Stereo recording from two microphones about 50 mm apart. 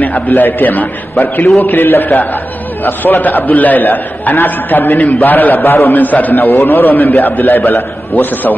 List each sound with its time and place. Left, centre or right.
0.4 s a man's voice: left
5.9 s a man's voice: left
6.4 s a man's voice: left